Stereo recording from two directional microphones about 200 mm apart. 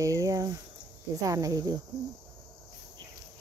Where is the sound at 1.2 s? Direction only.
15° right (ahead or behind).